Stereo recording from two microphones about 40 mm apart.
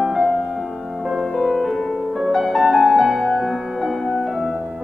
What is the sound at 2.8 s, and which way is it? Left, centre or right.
Music, centre.